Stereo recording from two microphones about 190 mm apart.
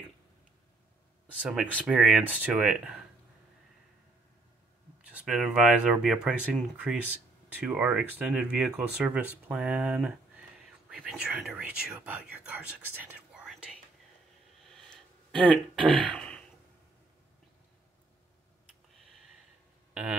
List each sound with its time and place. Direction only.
1.4 s speech: 5° right (ahead or behind)
5.1 s speech: 5° right (ahead or behind)
13.1 s whispering: 5° right (ahead or behind)
14.9 s a sound: 5° left (ahead or behind)
16.1 s throat clearing: 5° left (ahead or behind)
19.9 s a sound: 5° right (ahead or behind)